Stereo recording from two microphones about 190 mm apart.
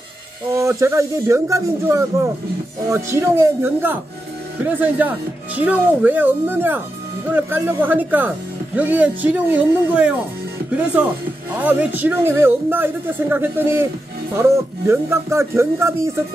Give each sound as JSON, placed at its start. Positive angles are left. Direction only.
{"t": 0.6, "sound": "speech", "side_deg": -15}
{"t": 11.5, "sound": "speech", "side_deg": -10}